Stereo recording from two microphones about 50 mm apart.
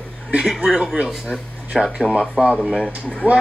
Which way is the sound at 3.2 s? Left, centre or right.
Right.